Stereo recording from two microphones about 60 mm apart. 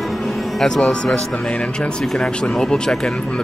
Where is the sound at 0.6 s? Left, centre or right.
Centre.